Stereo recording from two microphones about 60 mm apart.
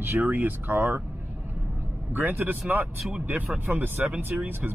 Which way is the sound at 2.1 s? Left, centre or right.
Right.